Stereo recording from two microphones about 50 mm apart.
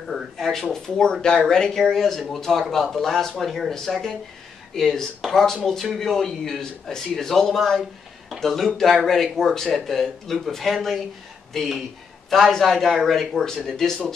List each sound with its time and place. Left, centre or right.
0.1 s a man's voice: centre